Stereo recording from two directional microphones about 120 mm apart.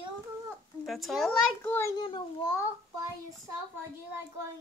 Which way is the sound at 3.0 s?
30° right (ahead or behind).